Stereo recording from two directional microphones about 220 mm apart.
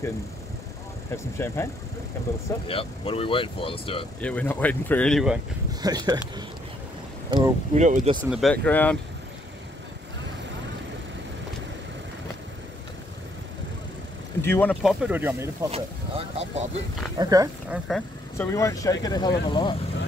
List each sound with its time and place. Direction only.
1.1 s speech: 10° left (ahead or behind)
2.6 s speech: 25° left (ahead or behind)
4.2 s speech: 5° left (ahead or behind)
5.8 s speech: 20° right (ahead or behind)
7.7 s speech: 35° right (ahead or behind)
8.2 s speech: centre (ahead or behind)
14.4 s speech: 10° left (ahead or behind); by 15.7 s 10° right (ahead or behind)
15.7 s speech: 25° right (ahead or behind)
17.2 s speech: 15° right (ahead or behind)
17.6 s speech: centre (ahead or behind)
18.5 s speech: 15° left (ahead or behind)